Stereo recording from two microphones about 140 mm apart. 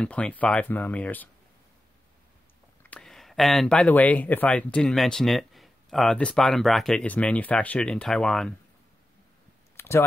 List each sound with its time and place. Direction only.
0.0 s speech: 10° left (ahead or behind)
2.8 s speech: 10° left (ahead or behind)
9.8 s a sound: 15° left (ahead or behind)